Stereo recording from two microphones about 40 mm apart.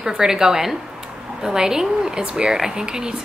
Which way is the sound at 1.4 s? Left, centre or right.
Centre.